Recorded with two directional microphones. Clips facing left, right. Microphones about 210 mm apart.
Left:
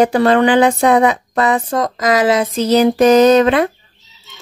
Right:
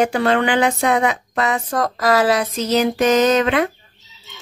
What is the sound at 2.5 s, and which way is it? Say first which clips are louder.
Speech: left 6 dB; 35° left (ahead or behind).